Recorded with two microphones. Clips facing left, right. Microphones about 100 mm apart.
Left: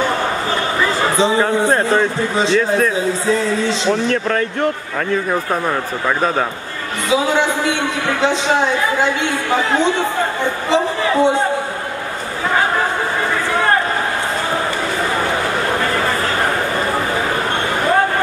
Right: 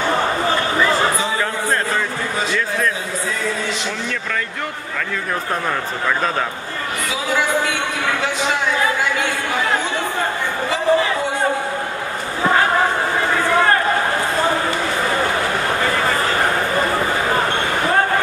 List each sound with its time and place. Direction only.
1.1 s speech: 25° left (ahead or behind)
8.2 s speech: 25° left (ahead or behind)